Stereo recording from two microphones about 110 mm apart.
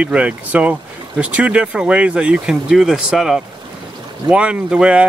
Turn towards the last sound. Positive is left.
turn(degrees=-10)  # may be behind; listen again after turning